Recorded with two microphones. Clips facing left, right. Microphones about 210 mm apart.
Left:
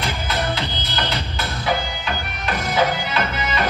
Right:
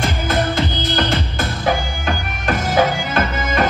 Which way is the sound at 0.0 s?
50° right (ahead or behind).